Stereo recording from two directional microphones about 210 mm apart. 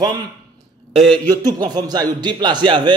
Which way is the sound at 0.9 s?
25° right (ahead or behind).